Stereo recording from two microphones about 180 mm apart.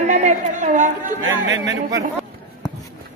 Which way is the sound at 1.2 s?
85° right.